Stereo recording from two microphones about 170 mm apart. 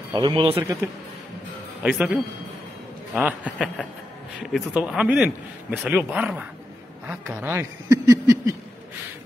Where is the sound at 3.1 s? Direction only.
10° right (ahead or behind).